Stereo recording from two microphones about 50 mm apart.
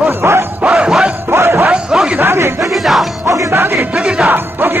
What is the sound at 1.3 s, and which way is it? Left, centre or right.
Music, right.